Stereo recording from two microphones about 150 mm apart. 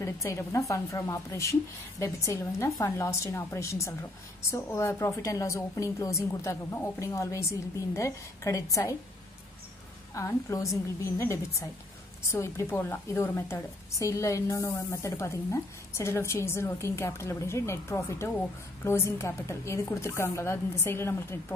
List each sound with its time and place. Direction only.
0.0 s a woman's voice: 20° left (ahead or behind)
10.1 s a woman's voice: 20° left (ahead or behind)